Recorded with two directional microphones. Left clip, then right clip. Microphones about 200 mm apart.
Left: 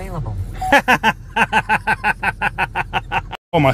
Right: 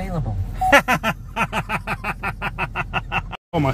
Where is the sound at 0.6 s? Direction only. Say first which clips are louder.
Left 2 dB; 30° left (ahead or behind).